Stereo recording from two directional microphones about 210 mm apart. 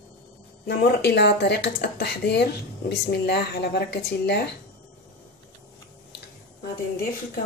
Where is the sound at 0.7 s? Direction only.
50° left (ahead or behind).